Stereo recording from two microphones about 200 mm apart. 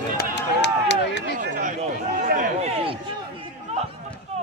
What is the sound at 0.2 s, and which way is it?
Run, 60° left (ahead or behind).